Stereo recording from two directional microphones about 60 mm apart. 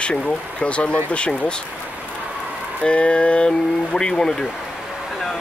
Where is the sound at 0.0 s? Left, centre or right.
Centre.